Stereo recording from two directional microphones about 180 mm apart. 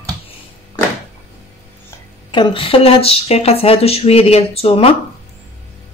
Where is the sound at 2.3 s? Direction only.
30° left (ahead or behind).